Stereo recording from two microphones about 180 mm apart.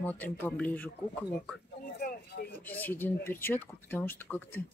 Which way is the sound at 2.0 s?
60° left (ahead or behind).